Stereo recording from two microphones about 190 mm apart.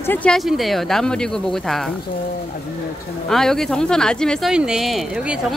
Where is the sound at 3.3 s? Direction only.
Centre (ahead or behind).